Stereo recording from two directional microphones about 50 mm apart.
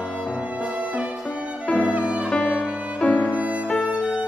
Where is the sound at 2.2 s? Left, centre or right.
Left.